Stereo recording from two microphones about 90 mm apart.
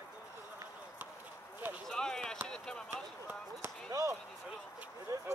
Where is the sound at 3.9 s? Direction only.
35° right (ahead or behind).